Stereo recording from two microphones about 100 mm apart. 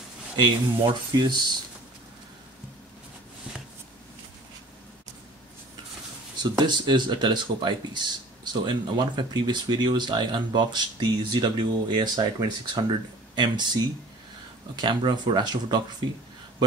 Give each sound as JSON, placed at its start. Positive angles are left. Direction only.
{"t": 0.4, "sound": "speech", "side_deg": -45}
{"t": 6.4, "sound": "speech", "side_deg": -45}
{"t": 14.8, "sound": "speech", "side_deg": -50}